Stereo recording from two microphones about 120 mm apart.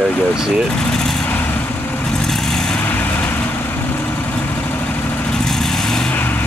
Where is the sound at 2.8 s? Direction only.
15° left (ahead or behind).